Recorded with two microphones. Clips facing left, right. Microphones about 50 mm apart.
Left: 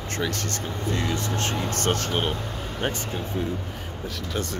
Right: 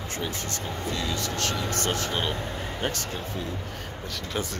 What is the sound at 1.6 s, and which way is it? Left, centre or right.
Speech, left.